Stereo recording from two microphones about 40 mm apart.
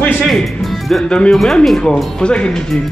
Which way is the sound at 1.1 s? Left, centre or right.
Left.